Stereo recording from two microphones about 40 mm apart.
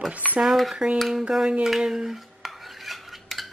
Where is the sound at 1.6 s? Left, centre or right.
Centre.